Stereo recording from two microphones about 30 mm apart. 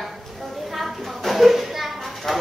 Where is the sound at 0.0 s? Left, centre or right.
Centre.